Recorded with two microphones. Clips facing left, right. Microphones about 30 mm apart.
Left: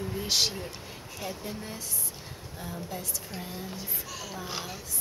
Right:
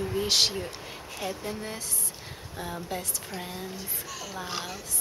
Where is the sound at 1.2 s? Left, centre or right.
Centre.